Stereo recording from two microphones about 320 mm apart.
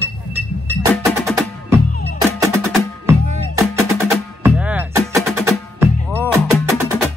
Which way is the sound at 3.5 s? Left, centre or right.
Centre.